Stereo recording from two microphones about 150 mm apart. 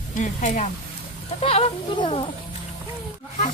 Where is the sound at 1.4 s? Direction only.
40° left (ahead or behind).